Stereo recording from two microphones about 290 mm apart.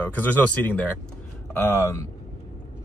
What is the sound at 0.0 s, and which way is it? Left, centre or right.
Speech, centre.